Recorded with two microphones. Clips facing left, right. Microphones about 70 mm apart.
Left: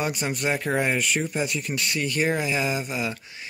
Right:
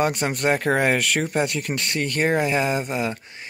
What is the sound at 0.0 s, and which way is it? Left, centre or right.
Speech, right.